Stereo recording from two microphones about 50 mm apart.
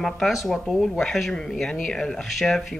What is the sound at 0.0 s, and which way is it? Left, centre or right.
Speech, centre.